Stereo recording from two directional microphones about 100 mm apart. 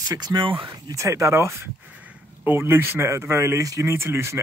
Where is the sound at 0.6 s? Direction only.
35° right (ahead or behind).